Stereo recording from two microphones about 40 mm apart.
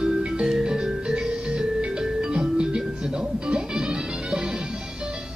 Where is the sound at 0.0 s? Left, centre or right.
Centre.